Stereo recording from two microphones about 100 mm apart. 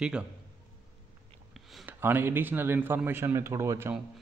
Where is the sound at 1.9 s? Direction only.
20° right (ahead or behind).